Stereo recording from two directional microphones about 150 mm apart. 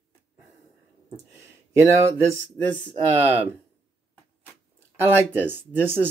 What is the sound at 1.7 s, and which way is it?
Speech, 20° right (ahead or behind).